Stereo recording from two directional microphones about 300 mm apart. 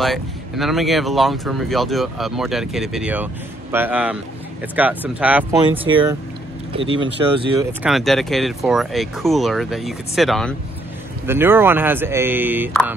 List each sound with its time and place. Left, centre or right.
0.0 s speech: centre
5.6 s speech: centre
7.8 s speech: centre